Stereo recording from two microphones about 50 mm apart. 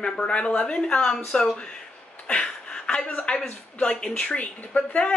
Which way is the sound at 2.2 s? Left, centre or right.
Left.